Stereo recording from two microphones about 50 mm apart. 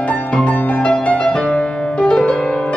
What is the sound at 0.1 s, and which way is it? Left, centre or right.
Music, left.